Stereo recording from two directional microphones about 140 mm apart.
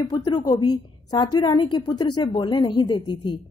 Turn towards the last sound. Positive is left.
turn(degrees=35)  # may be behind; listen again after turning